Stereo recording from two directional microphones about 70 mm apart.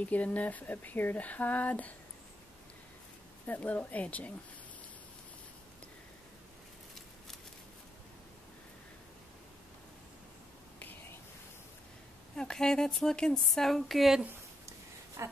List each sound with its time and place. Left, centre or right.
0.1 s speech: left
3.4 s speech: left
10.8 s whispering: left
12.4 s speech: centre
15.2 s speech: right